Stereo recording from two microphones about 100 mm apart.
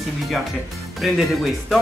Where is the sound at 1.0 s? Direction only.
Centre (ahead or behind).